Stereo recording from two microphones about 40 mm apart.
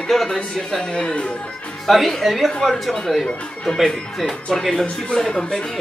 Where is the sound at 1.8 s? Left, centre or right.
Centre; by 5.7 s left.